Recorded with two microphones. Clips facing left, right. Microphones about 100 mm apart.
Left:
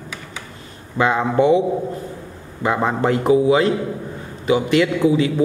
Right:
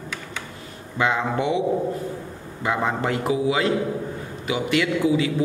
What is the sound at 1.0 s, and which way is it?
Speech, 35° left (ahead or behind).